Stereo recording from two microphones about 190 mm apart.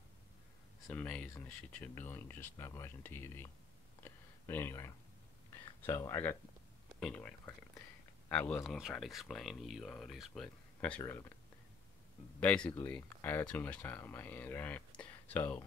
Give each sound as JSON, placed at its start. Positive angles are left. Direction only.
{"t": 0.8, "sound": "speech", "side_deg": 5}
{"t": 4.0, "sound": "a sound", "side_deg": 10}
{"t": 5.8, "sound": "speech", "side_deg": 15}
{"t": 12.4, "sound": "speech", "side_deg": 5}